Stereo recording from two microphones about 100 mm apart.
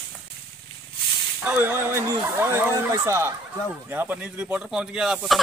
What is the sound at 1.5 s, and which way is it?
Speech, 20° right (ahead or behind).